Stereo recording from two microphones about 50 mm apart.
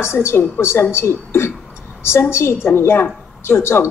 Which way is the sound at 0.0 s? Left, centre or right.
Left.